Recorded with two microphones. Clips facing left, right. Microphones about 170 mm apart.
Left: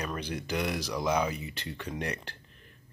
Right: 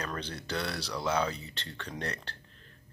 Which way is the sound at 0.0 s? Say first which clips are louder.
Left 3 dB; 10° left (ahead or behind).